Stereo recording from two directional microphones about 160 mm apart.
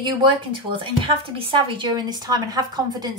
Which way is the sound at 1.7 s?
30° right (ahead or behind).